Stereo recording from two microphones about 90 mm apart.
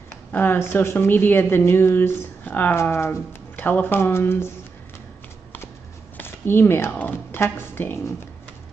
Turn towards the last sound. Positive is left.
turn(degrees=25)  # may be behind; listen again after turning